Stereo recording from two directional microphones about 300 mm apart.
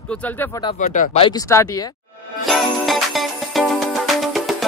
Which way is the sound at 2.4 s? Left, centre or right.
Centre.